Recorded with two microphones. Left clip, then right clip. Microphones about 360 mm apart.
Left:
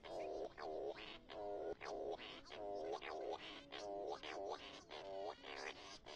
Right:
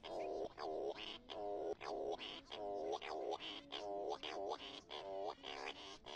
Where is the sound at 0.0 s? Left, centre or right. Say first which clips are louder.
Right 2 dB; right.